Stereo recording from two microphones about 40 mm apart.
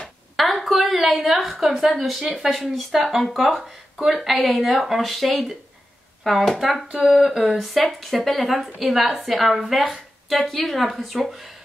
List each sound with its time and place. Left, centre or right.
0.4 s a woman's voice: centre
3.6 s a woman's voice: centre